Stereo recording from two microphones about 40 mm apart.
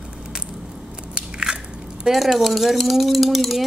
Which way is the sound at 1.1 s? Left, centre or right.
Right.